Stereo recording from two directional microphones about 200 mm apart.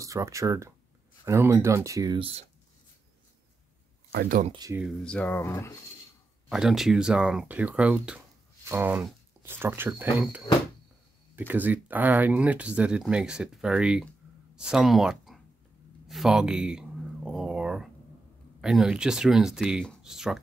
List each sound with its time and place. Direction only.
0.0 s speech: 15° right (ahead or behind)
4.1 s speech: 50° right (ahead or behind)
4.5 s speech: 20° right (ahead or behind)
5.0 s speech: 5° left (ahead or behind)
6.5 s speech: centre (ahead or behind)
16.1 s a sound: centre (ahead or behind)
18.6 s speech: 5° right (ahead or behind)